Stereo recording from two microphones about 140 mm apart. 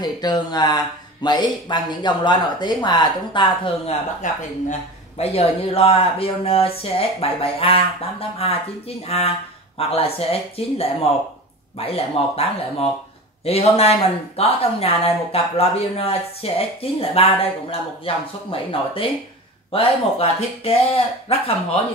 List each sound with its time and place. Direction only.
0.0 s speech: 30° left (ahead or behind)
4.2 s speech: 55° left (ahead or behind)